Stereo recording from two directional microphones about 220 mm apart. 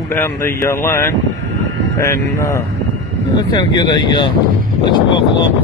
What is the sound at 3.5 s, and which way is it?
Speech, 20° left (ahead or behind).